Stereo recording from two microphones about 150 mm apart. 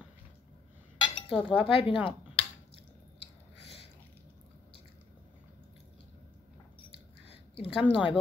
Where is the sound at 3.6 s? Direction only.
40° left (ahead or behind).